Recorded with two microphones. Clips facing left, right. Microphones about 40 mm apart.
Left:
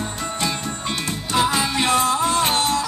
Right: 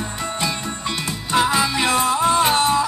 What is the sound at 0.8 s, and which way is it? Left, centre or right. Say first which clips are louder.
Music: right 2 dB; centre.